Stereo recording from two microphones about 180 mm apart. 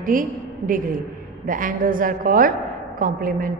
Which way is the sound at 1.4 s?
50° right (ahead or behind).